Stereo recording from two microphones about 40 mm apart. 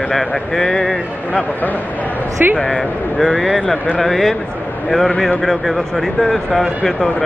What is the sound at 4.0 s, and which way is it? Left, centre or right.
Speech, centre.